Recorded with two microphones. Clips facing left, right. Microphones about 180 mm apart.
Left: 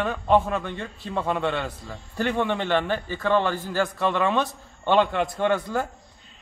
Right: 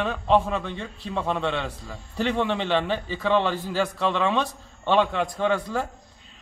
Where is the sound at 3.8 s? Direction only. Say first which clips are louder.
Left 1 dB; 5° left (ahead or behind).